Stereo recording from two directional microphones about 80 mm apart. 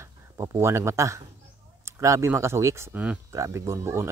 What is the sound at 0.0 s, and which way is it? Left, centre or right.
Speech, right.